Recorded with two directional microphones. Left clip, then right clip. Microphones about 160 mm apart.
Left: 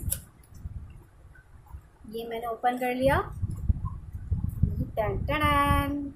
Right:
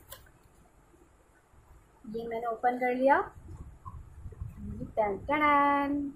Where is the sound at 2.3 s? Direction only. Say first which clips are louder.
Left 2 dB; 10° left (ahead or behind).